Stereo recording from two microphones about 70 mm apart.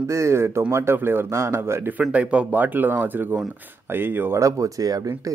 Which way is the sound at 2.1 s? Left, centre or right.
Centre.